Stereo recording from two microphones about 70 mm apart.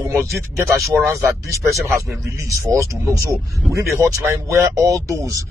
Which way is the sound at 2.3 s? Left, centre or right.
Right.